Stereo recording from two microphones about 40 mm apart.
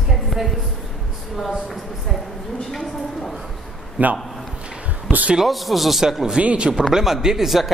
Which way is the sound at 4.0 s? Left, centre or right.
Right.